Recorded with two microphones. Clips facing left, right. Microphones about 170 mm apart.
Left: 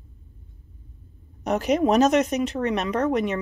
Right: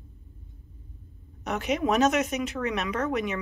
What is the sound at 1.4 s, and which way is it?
Speech, 35° left (ahead or behind).